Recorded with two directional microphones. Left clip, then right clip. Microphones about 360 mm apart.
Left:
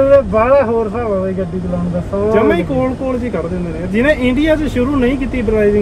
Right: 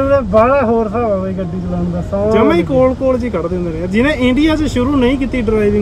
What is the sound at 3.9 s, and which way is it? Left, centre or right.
Speech, centre.